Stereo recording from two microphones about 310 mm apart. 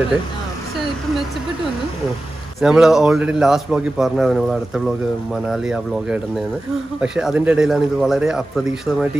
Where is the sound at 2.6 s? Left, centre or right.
Centre.